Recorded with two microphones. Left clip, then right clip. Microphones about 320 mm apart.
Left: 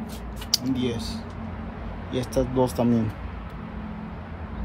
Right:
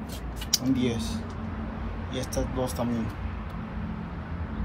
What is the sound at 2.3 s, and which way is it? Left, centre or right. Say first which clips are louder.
Speech: left 8 dB; centre.